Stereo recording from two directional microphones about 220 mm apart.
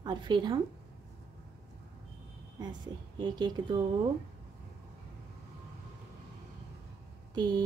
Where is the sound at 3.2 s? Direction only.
20° right (ahead or behind).